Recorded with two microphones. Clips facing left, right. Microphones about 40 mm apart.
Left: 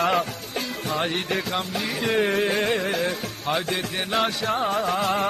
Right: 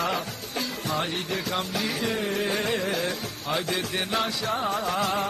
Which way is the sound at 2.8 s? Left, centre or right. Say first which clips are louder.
Left 3 dB; left.